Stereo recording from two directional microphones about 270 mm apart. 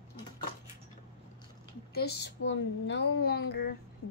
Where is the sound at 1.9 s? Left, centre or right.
Left.